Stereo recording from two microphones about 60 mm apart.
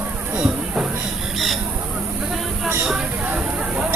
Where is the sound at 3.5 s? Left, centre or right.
Centre.